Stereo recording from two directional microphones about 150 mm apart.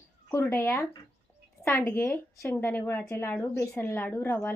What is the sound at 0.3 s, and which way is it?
A woman's voice, 15° left (ahead or behind).